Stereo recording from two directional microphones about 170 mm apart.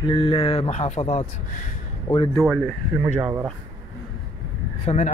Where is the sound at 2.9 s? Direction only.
15° right (ahead or behind).